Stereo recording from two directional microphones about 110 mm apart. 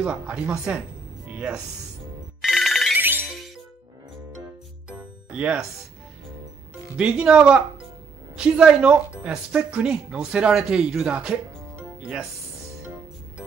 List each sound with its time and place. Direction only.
0.0 s speech: 10° right (ahead or behind)
2.4 s ringtone: centre (ahead or behind)
3.0 s music: 20° right (ahead or behind)
4.8 s music: 10° right (ahead or behind)
7.0 s speech: 10° right (ahead or behind)